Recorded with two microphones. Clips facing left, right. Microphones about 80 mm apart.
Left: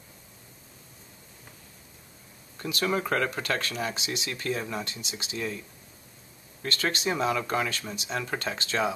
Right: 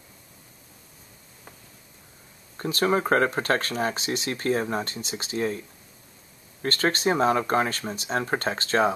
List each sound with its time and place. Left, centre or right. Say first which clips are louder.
2.5 s speech: right 5 dB; right
6.6 s speech: right 5 dB; right